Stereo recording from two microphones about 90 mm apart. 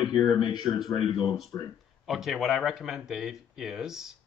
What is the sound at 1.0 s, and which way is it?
Speech, 75° left (ahead or behind).